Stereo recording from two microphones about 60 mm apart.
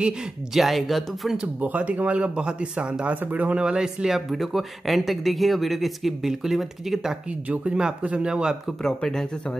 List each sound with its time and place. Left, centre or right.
0.6 s speech: centre
1.6 s speech: right; by 7.2 s centre
7.4 s speech: right
8.8 s speech: centre